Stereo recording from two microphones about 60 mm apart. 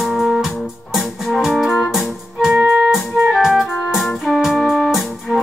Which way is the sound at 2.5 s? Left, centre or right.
Centre.